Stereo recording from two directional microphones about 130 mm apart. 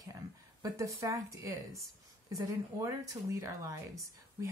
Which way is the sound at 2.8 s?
25° right (ahead or behind).